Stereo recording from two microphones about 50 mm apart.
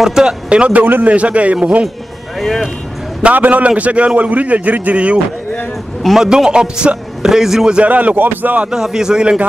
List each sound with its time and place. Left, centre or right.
0.0 s a man's voice: centre
3.3 s a man's voice: right
6.1 s a man's voice: centre
7.7 s a man's voice: right
8.6 s a man's voice: centre